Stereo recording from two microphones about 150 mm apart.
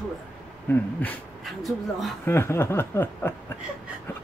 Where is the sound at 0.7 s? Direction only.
10° left (ahead or behind).